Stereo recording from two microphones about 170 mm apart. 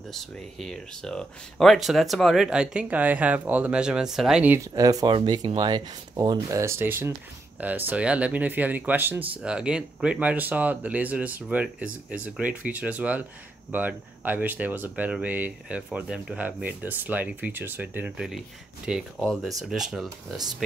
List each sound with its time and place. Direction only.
0.1 s speech: centre (ahead or behind)
4.7 s speech: 20° right (ahead or behind); by 20.1 s centre (ahead or behind)